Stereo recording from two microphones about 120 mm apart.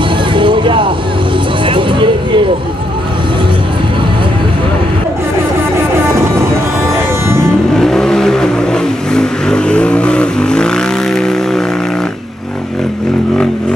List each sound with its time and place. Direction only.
0.3 s vehicle: 45° right (ahead or behind)
7.2 s vehicle: 20° right (ahead or behind)
7.7 s vehicle: 5° left (ahead or behind)